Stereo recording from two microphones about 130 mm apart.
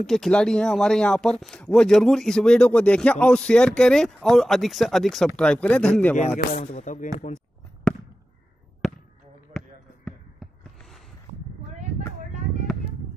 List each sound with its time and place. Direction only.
0.0 s speech: centre (ahead or behind)
6.1 s speech: 65° left (ahead or behind)
7.9 s fireworks: 5° left (ahead or behind)
8.8 s basketball bounce: 5° left (ahead or behind)